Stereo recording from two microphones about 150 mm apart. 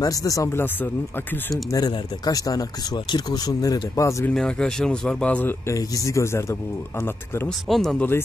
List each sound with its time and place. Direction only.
0.0 s speech: 25° left (ahead or behind)
4.3 s a man's voice: 5° left (ahead or behind)
7.4 s a man's voice: centre (ahead or behind)